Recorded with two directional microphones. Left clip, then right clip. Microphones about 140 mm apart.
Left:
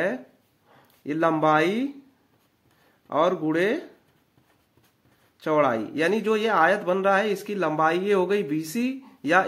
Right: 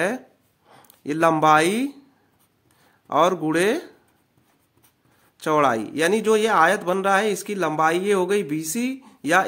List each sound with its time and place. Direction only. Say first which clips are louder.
0.7 s speech: right 3 dB; 50° right (ahead or behind)
3.1 s speech: right 3 dB; 50° right (ahead or behind)
5.4 s speech: right 3 dB; 45° right (ahead or behind); by 9.4 s 30° right (ahead or behind)